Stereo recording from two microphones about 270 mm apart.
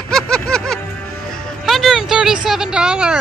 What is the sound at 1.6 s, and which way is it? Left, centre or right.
Speech, centre.